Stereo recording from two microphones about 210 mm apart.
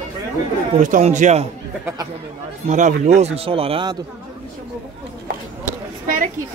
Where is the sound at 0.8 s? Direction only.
35° right (ahead or behind).